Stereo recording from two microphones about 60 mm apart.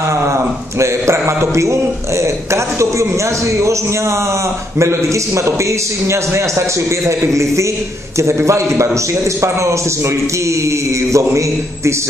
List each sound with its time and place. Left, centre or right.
0.2 s a man's voice: right
4.7 s a man's voice: right